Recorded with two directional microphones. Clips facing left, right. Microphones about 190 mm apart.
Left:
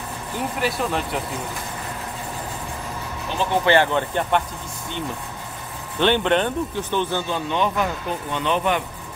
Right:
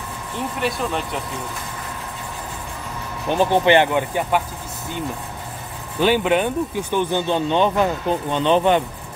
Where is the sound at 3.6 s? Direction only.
15° right (ahead or behind).